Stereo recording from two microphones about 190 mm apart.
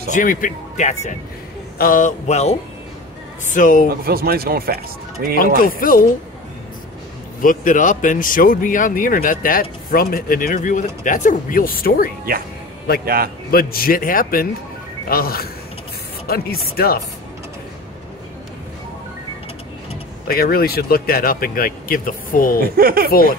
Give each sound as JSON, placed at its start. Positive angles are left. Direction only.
{"t": 0.1, "sound": "speech", "side_deg": 45}
{"t": 3.9, "sound": "speech", "side_deg": -50}
{"t": 5.3, "sound": "speech", "side_deg": 50}
{"t": 7.4, "sound": "speech", "side_deg": 45}
{"t": 13.0, "sound": "speech", "side_deg": -50}
{"t": 13.5, "sound": "speech", "side_deg": 50}
{"t": 20.2, "sound": "speech", "side_deg": 50}
{"t": 22.8, "sound": "speech", "side_deg": -50}
{"t": 23.0, "sound": "speech", "side_deg": 50}